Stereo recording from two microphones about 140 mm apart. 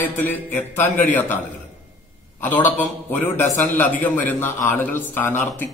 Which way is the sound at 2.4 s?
15° left (ahead or behind).